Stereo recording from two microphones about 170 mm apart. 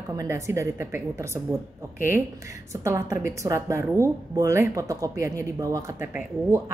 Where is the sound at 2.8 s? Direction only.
15° right (ahead or behind).